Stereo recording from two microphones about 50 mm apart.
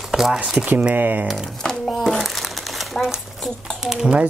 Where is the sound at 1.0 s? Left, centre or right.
Right.